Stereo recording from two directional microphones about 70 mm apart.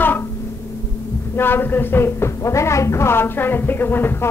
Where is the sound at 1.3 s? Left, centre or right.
Left.